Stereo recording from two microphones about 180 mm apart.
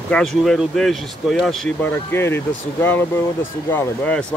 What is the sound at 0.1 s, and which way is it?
Speech, centre (ahead or behind).